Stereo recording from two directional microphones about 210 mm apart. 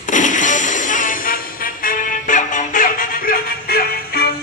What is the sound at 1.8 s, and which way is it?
Music, 35° left (ahead or behind).